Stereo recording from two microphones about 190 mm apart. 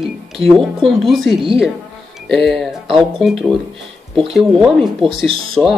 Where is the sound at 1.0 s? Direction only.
Centre (ahead or behind).